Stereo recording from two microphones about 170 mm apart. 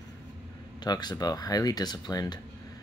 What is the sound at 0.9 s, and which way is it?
Speech, 25° left (ahead or behind).